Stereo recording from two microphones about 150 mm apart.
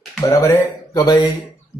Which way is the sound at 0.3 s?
25° left (ahead or behind).